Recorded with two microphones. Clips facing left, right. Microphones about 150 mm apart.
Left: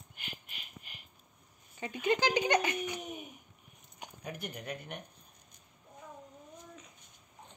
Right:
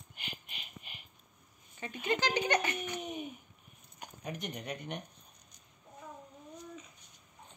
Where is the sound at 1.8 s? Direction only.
15° left (ahead or behind).